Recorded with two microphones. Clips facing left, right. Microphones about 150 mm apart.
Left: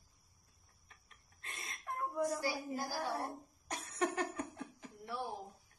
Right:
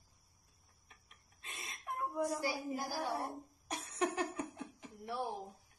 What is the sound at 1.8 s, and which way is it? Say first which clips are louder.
A woman's voice: even; 15° right (ahead or behind).